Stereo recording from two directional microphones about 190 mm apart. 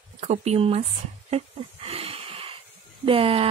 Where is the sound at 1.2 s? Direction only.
30° right (ahead or behind).